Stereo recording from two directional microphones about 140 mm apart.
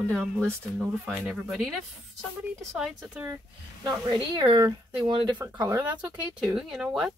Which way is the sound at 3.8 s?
30° right (ahead or behind).